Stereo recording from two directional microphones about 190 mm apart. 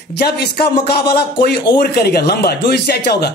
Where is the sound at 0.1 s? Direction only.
60° left (ahead or behind).